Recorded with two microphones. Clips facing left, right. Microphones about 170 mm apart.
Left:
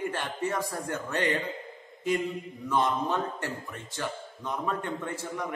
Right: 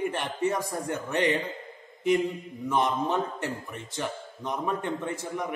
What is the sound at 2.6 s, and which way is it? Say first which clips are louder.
A man's voice: right 1 dB; 20° right (ahead or behind).